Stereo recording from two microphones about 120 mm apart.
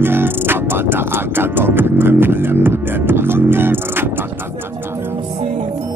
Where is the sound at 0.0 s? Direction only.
20° right (ahead or behind).